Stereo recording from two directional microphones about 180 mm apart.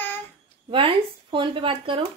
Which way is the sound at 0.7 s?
30° right (ahead or behind).